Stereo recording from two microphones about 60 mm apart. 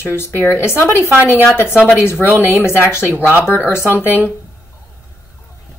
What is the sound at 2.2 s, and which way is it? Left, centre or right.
Speech, right.